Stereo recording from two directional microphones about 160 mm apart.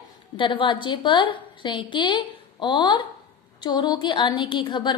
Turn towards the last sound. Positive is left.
turn(degrees=30)  # may be behind; listen again after turning